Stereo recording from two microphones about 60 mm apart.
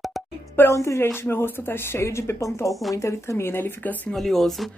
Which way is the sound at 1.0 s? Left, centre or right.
Left.